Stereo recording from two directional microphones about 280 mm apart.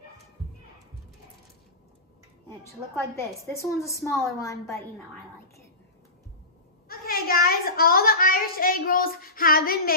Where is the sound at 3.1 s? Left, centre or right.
Centre.